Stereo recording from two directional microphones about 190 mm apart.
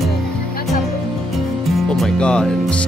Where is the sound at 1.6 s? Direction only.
Centre (ahead or behind).